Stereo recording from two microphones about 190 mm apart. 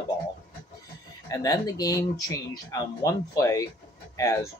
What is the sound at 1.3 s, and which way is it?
Speech, 20° left (ahead or behind).